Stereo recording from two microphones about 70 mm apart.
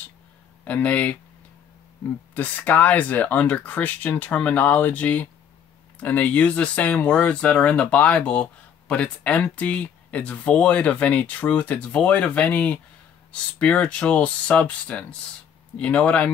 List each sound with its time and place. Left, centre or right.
0.7 s speech: centre
2.3 s speech: left